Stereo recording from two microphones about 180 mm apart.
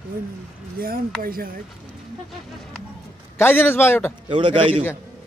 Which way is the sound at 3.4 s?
10° left (ahead or behind).